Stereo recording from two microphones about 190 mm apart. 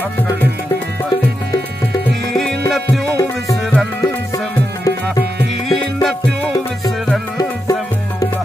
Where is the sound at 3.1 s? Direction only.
15° left (ahead or behind).